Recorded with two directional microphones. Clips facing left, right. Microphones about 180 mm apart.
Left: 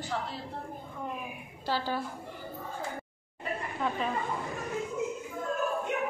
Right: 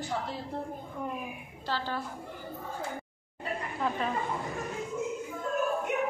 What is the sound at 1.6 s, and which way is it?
Speech, 10° left (ahead or behind).